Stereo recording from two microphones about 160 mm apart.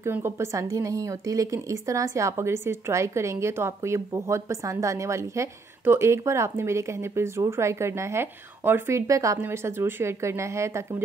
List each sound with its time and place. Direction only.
0.0 s a woman's voice: 15° right (ahead or behind)